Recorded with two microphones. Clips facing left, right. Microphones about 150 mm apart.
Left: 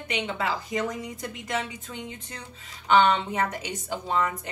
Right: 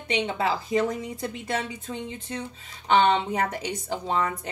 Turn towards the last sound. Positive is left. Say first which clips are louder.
# right 1 dB
turn(degrees=-35)  # may be behind; listen again after turning